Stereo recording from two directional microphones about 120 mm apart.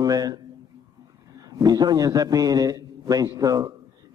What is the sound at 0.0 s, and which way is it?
Speech, 30° right (ahead or behind).